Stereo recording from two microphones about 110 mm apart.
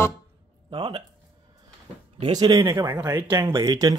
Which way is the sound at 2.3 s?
35° right (ahead or behind).